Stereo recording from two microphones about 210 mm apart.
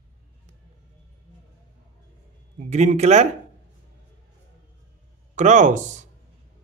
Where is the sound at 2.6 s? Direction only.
35° right (ahead or behind).